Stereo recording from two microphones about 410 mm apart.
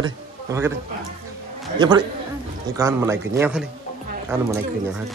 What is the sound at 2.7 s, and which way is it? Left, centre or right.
A man's voice, centre.